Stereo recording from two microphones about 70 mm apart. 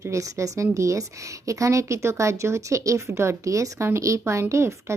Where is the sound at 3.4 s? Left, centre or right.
Right.